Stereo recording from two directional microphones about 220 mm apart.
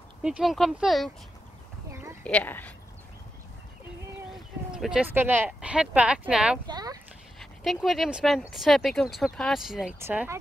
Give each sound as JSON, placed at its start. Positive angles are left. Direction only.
{"t": 0.2, "sound": "speech", "side_deg": -5}
{"t": 1.9, "sound": "a sound", "side_deg": -15}
{"t": 2.2, "sound": "a woman's voice", "side_deg": 5}
{"t": 4.7, "sound": "speech", "side_deg": -5}
{"t": 6.7, "sound": "a sound", "side_deg": -15}
{"t": 7.3, "sound": "speech", "side_deg": 0}